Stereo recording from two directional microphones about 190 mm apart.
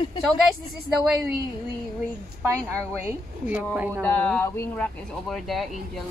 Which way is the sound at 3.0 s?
10° right (ahead or behind).